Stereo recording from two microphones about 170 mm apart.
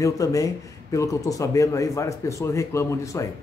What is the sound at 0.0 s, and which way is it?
A man's voice, 20° left (ahead or behind).